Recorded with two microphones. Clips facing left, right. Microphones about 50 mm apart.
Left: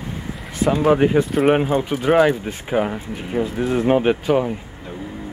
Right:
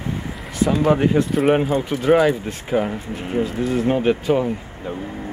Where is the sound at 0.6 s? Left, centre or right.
Centre.